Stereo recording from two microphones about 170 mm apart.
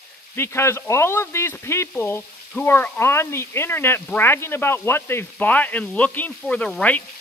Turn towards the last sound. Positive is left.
turn(degrees=10)  # may be behind; listen again after turning